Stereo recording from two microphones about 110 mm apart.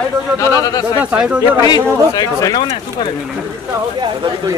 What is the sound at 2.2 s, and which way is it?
Speech, 35° left (ahead or behind).